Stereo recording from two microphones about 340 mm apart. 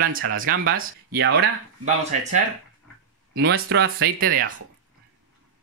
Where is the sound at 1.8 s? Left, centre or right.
Centre.